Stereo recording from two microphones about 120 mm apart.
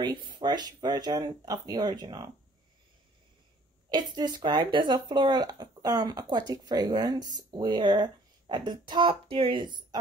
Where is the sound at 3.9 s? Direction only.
35° right (ahead or behind).